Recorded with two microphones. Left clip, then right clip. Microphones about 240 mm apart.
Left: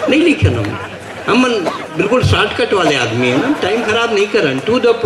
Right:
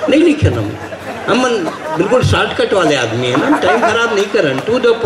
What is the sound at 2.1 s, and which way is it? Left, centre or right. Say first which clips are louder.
A man's voice: even; left.